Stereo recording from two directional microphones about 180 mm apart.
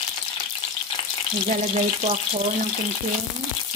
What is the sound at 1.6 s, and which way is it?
Frying, 40° right (ahead or behind).